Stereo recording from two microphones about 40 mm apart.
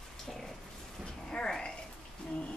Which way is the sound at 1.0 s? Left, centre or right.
Left.